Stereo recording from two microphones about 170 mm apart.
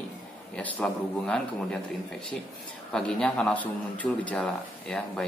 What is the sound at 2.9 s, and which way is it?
A man's voice, 5° left (ahead or behind).